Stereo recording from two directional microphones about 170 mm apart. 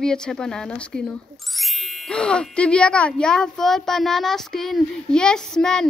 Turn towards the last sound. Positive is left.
turn(degrees=5)  # may be behind; listen again after turning